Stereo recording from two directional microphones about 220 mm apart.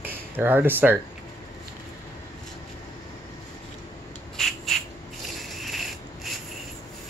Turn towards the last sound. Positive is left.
turn(degrees=0)  # may be behind; listen again after turning